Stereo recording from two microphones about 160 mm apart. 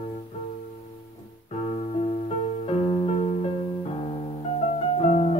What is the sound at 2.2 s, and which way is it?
Music, 40° left (ahead or behind).